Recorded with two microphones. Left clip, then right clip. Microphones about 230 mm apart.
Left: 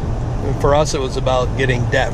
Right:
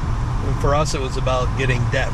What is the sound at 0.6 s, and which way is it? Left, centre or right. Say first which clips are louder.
Speech: left 5 dB; left.